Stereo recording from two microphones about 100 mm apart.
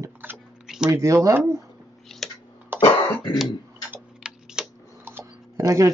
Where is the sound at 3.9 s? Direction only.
10° right (ahead or behind).